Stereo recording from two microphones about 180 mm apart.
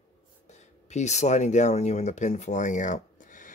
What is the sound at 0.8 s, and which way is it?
Speech, 40° left (ahead or behind).